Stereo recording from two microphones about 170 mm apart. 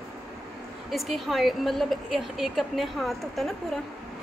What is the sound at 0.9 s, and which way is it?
A woman's voice, centre (ahead or behind).